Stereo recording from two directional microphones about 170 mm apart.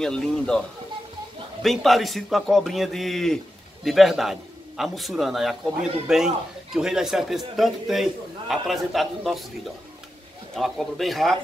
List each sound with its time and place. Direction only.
0.0 s a man's voice: 5° left (ahead or behind)
10.5 s a man's voice: centre (ahead or behind)